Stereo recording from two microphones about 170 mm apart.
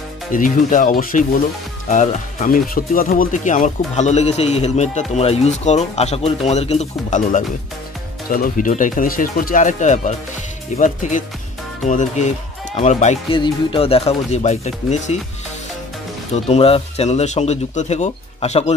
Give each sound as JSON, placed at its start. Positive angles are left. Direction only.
{"t": 0.3, "sound": "speech", "side_deg": 50}
{"t": 13.3, "sound": "speech", "side_deg": 30}
{"t": 16.4, "sound": "speech", "side_deg": 35}